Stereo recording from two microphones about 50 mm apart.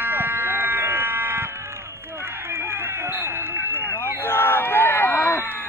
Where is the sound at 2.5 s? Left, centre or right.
Right.